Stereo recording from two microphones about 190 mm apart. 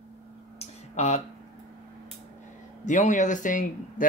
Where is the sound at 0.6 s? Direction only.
35° left (ahead or behind).